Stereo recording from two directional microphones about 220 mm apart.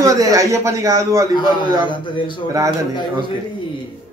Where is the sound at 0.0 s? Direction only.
15° right (ahead or behind).